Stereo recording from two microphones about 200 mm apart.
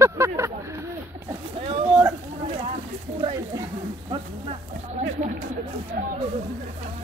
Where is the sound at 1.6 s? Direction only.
30° right (ahead or behind).